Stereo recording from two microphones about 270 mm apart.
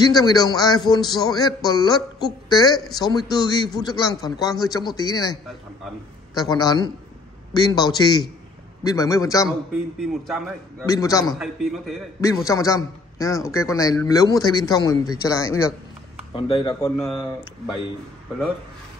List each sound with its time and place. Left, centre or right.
0.0 s a man's voice: centre
9.5 s a man's voice: centre
10.9 s a man's voice: centre
11.3 s a man's voice: centre
12.4 s a man's voice: centre
16.8 s a man's voice: centre